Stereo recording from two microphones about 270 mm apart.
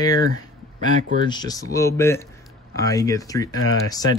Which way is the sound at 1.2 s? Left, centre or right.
Centre.